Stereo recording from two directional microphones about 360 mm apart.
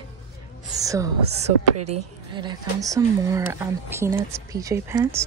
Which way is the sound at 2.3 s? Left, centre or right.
Centre.